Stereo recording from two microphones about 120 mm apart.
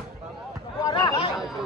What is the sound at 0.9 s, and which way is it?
Chatter, 35° left (ahead or behind).